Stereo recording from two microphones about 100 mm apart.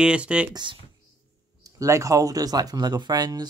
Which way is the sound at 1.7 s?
35° right (ahead or behind).